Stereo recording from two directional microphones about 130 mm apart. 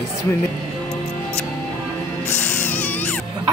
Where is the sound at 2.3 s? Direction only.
15° left (ahead or behind).